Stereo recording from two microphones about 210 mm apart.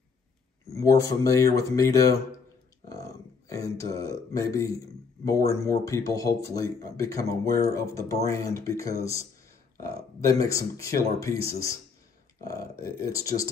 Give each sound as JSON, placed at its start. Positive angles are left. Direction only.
{"t": 0.7, "sound": "a man's voice", "side_deg": 15}
{"t": 3.4, "sound": "a man's voice", "side_deg": 15}
{"t": 10.2, "sound": "a man's voice", "side_deg": 15}